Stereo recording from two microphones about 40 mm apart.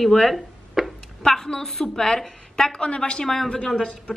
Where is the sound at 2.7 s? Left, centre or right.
Left.